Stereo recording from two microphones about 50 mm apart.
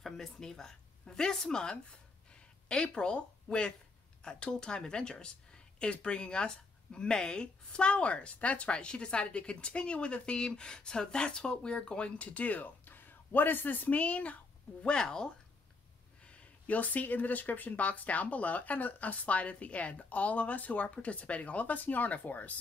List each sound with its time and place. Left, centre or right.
0.0 s a woman's voice: centre; by 14.3 s left
14.8 s speech: centre
16.3 s speech: left